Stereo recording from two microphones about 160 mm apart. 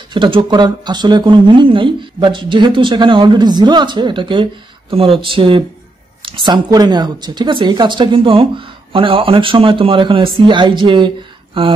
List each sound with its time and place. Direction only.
0.1 s speech: 30° right (ahead or behind)